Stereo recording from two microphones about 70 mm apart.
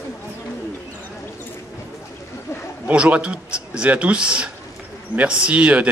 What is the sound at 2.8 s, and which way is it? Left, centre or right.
A man's voice, centre.